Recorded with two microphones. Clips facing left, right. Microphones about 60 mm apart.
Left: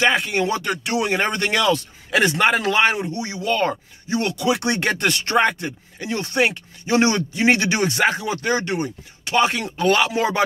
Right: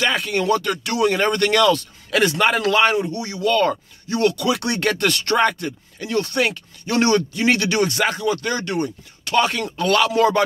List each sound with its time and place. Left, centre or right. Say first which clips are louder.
0.0 s speech: left 2 dB; centre